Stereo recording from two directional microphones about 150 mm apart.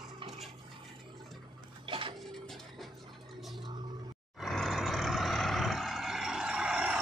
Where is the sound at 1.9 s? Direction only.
35° right (ahead or behind).